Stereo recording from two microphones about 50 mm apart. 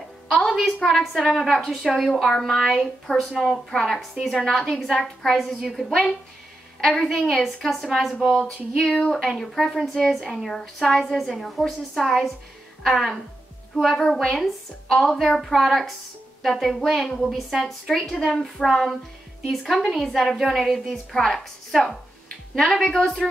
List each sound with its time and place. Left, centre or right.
0.3 s a sound: centre
0.8 s a woman's voice: centre
8.8 s speech: centre
9.1 s a woman's voice: centre
21.1 s speech: centre
22.6 s a woman's voice: centre